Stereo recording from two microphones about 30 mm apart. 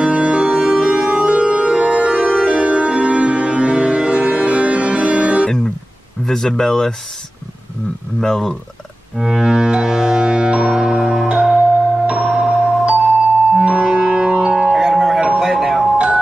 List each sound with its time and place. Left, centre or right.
0.0 s organ: right
6.2 s speech: centre
8.2 s speech: centre
9.1 s music: right
9.4 s music: right
14.7 s music: centre
15.3 s a sound: centre